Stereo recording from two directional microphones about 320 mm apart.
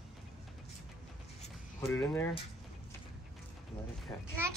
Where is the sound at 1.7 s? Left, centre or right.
Centre.